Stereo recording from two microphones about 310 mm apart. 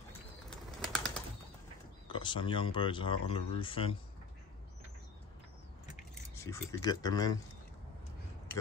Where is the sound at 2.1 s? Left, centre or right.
Centre.